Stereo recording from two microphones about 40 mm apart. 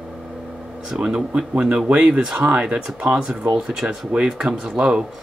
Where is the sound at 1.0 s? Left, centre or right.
Centre.